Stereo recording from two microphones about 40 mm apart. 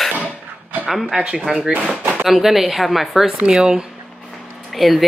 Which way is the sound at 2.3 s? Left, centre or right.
Centre.